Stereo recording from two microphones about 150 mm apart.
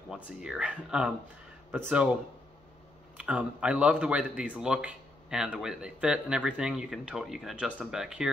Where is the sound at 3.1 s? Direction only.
10° right (ahead or behind).